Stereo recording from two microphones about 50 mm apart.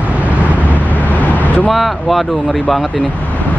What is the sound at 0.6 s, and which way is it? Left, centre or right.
Vehicle, left.